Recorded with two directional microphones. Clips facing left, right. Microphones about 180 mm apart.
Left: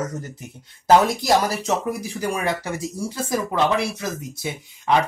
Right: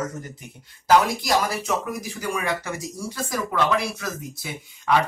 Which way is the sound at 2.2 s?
30° left (ahead or behind).